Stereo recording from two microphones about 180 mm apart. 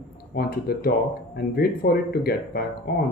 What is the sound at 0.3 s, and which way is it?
Speech, 55° left (ahead or behind).